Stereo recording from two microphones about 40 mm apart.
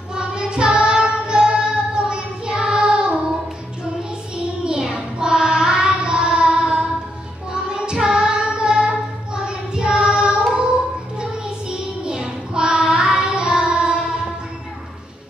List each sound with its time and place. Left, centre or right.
0.1 s music: right
4.6 s child singing: centre
12.0 s child singing: right